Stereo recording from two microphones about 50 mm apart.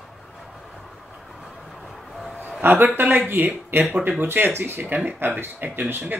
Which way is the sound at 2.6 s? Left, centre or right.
Right.